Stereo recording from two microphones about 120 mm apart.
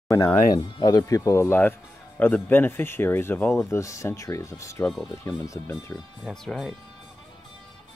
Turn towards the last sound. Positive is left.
turn(degrees=5)  # may be behind; listen again after turning